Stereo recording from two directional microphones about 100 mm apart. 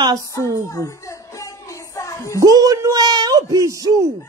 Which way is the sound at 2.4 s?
35° right (ahead or behind).